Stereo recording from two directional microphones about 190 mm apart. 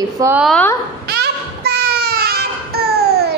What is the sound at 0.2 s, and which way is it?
Speech, 10° right (ahead or behind).